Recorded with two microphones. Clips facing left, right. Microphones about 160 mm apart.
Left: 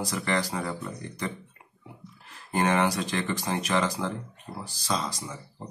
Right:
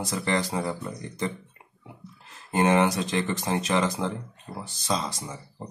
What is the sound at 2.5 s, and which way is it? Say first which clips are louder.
Speech: right 3 dB; 20° right (ahead or behind).